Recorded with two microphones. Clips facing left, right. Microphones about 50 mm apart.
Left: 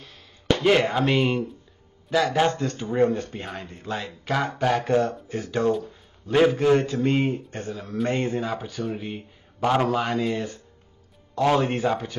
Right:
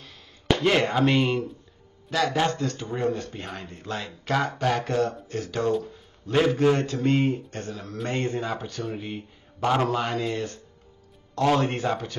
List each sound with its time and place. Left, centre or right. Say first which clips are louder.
0.5 s speech: left 2 dB; centre
2.3 s speech: left 2 dB; centre
3.4 s speech: left 2 dB; centre; by 5.7 s left
5.7 s speech: left 1 dB; centre